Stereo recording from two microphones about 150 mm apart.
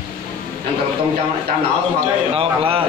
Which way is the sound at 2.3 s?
40° right (ahead or behind).